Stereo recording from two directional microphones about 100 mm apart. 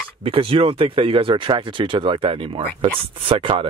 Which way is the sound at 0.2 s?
65° right (ahead or behind).